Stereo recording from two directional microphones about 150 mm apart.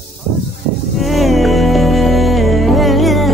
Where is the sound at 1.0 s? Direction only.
Centre (ahead or behind).